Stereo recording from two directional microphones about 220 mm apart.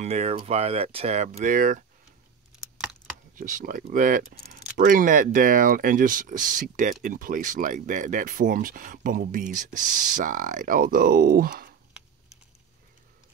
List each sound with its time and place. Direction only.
0.0 s speech: 30° right (ahead or behind)
3.3 s speech: 35° right (ahead or behind)